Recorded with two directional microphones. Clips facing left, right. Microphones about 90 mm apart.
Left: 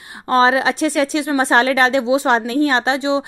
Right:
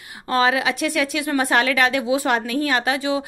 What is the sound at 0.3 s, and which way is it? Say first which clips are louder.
A woman's voice: left 5 dB; 30° left (ahead or behind).